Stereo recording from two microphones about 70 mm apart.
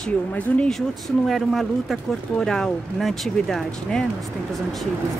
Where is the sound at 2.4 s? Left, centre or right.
Centre.